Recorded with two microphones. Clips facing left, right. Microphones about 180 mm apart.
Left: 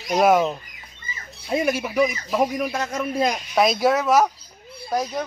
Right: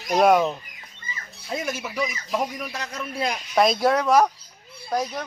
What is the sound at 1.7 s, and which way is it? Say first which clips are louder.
A man's voice: left 7 dB; 55° left (ahead or behind).